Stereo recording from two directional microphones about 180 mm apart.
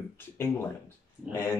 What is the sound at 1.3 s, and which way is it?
Speech, 15° left (ahead or behind).